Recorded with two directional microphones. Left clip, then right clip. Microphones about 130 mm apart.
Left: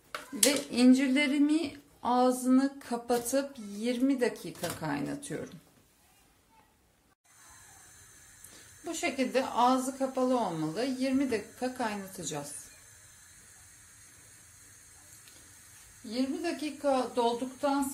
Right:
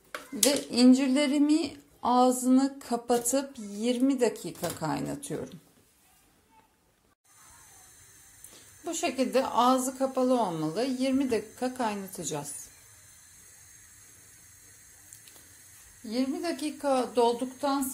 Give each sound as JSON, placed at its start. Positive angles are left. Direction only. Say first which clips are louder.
{"t": 0.4, "sound": "speech", "louder": "right 2 dB", "side_deg": -25}
{"t": 8.8, "sound": "a woman's voice", "louder": "right 3 dB", "side_deg": -40}
{"t": 16.6, "sound": "a woman's voice", "louder": "right 1 dB", "side_deg": -60}